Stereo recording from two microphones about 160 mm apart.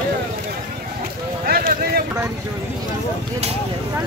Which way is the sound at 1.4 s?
70° right (ahead or behind).